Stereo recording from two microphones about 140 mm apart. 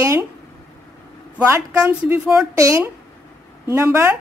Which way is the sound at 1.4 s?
20° right (ahead or behind).